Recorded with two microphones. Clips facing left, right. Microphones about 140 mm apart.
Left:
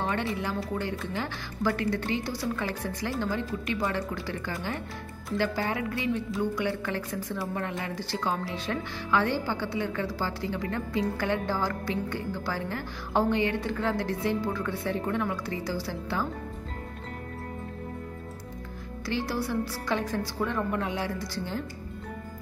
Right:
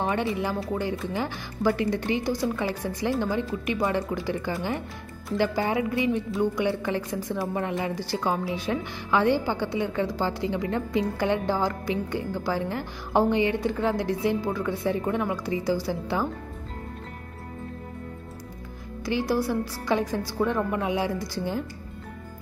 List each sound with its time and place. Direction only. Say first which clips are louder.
0.0 s a woman's voice: right 4 dB; 15° right (ahead or behind)
19.0 s a woman's voice: right 5 dB; 15° right (ahead or behind)